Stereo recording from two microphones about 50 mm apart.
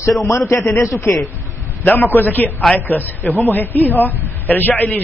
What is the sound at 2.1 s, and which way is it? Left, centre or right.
A man's voice, left.